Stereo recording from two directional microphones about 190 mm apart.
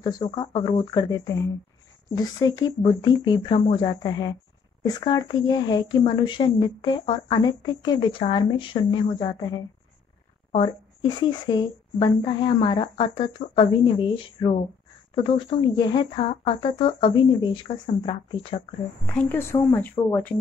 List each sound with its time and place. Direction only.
0.2 s speech: 25° left (ahead or behind)
19.0 s speech: 10° left (ahead or behind)